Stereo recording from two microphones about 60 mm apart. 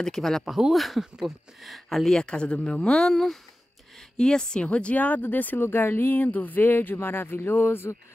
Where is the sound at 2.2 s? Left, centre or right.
Centre; by 7.9 s left.